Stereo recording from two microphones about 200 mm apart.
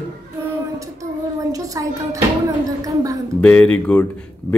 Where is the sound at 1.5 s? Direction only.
15° right (ahead or behind).